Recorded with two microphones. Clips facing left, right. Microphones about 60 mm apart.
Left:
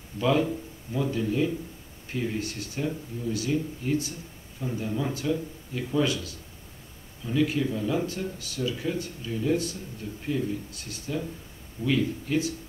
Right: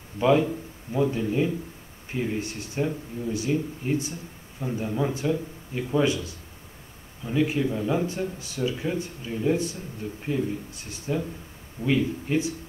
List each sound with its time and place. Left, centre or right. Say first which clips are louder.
0.2 s speech: right 3 dB; right